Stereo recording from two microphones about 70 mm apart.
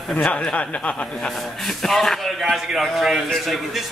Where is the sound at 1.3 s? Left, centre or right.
Centre.